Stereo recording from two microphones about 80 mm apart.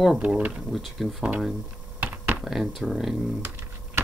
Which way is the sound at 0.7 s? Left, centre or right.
Centre.